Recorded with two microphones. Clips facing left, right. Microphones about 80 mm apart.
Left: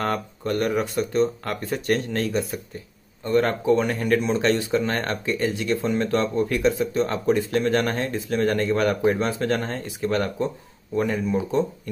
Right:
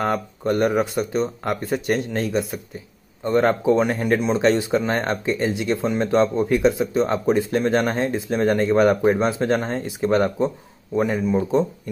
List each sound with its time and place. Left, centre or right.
0.0 s speech: centre